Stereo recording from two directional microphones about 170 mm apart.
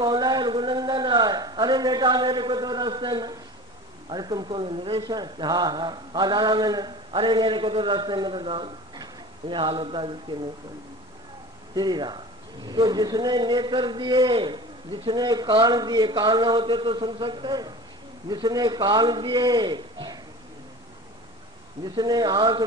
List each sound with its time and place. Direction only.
0.0 s a man's voice: 25° right (ahead or behind)
11.7 s speech: 25° right (ahead or behind)
21.8 s speech: 25° right (ahead or behind)